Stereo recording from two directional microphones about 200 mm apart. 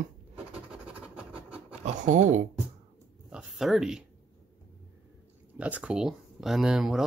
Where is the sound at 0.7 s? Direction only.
5° right (ahead or behind).